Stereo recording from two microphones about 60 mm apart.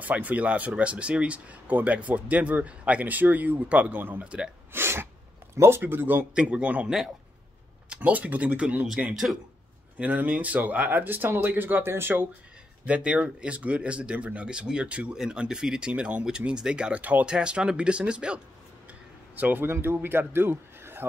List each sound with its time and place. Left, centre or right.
0.0 s speech: right
4.2 s speech: centre
4.7 s sneeze: right
5.6 s speech: right
6.3 s speech: right
7.9 s speech: right
9.1 s speech: centre
9.9 s speech: right
12.8 s speech: centre
19.3 s speech: right
19.7 s a man's voice: right